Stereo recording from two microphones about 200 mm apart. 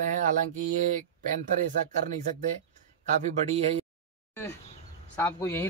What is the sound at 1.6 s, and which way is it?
Speech, 40° right (ahead or behind).